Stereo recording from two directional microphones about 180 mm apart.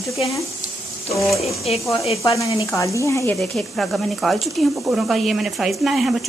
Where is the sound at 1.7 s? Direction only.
30° left (ahead or behind).